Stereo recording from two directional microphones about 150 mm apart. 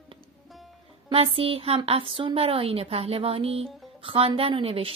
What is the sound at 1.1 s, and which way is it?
A woman's voice, 40° right (ahead or behind).